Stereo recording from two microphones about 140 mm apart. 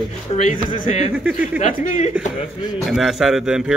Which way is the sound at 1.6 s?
60° left (ahead or behind).